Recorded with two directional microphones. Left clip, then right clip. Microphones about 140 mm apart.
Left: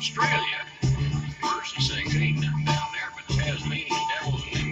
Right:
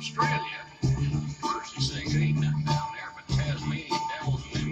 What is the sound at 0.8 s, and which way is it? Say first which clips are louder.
Music: left 1 dB; 20° right (ahead or behind).